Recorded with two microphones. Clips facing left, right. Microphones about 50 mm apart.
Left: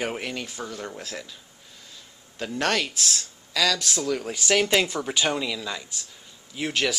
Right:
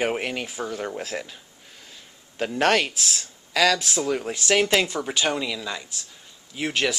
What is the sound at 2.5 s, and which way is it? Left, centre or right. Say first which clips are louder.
Speech: right 4 dB; right.